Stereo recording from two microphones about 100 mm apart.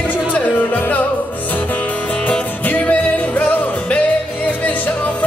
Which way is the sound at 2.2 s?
15° left (ahead or behind).